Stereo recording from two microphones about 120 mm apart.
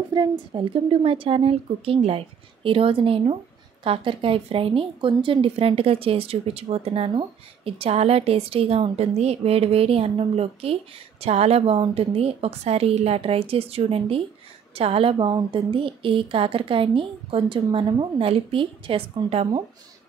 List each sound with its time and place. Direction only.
0.1 s a woman's voice: 40° right (ahead or behind)